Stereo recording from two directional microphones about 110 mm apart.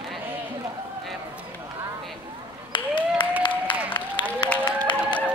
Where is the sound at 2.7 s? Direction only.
50° left (ahead or behind).